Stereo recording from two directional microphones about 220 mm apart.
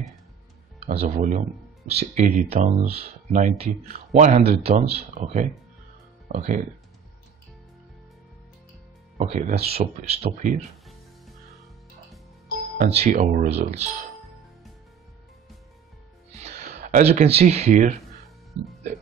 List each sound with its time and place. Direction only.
0.7 s speech: 30° right (ahead or behind)
9.2 s speech: 30° right (ahead or behind)
12.7 s speech: 30° right (ahead or behind)
16.3 s a sound: 30° right (ahead or behind)